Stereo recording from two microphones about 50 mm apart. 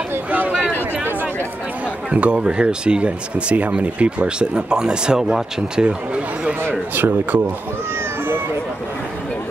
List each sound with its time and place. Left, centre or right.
2.0 s speech: right
7.0 s speech: right